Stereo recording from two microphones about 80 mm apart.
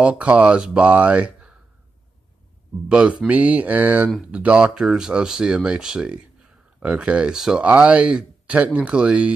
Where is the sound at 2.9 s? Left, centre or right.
Centre.